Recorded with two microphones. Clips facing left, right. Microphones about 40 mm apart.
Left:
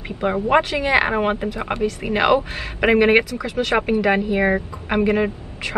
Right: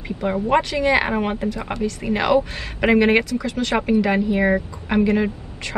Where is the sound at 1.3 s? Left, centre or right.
Left.